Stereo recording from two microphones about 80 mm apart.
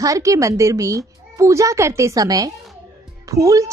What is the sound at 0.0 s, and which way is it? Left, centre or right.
Speech, right.